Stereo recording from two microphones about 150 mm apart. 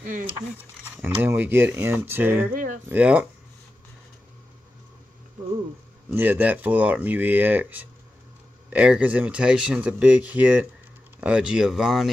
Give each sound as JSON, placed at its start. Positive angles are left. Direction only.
{"t": 0.0, "sound": "speech", "side_deg": -65}
{"t": 1.2, "sound": "speech", "side_deg": -15}
{"t": 2.5, "sound": "a sound", "side_deg": -65}
{"t": 2.9, "sound": "speech", "side_deg": -10}
{"t": 6.1, "sound": "speech", "side_deg": -10}